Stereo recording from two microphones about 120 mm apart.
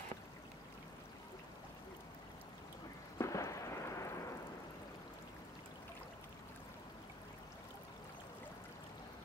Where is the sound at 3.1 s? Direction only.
25° left (ahead or behind).